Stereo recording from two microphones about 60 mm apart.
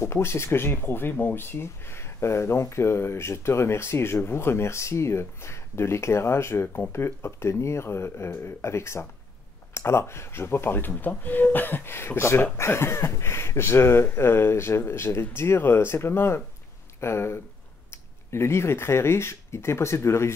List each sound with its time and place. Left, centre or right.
0.0 s speech: left